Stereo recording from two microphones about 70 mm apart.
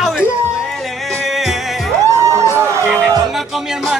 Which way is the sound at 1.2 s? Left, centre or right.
Centre.